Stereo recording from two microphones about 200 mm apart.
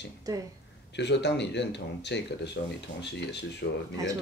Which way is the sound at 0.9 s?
60° left (ahead or behind).